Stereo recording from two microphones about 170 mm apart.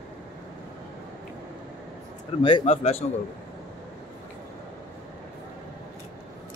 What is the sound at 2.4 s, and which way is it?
Speech, 30° left (ahead or behind).